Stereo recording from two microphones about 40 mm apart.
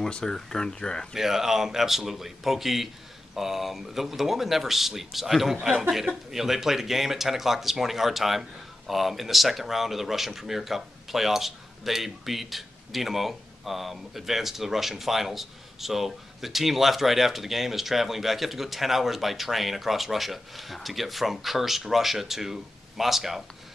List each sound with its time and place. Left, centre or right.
0.1 s speech: centre
1.1 s a man's voice: centre